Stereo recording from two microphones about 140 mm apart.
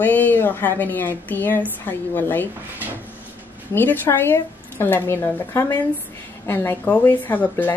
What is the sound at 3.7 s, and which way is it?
A woman's voice, 15° left (ahead or behind).